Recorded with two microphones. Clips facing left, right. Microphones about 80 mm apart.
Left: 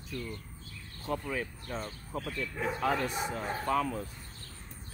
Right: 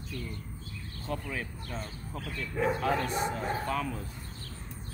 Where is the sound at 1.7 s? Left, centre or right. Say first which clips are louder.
Left 1 dB; left.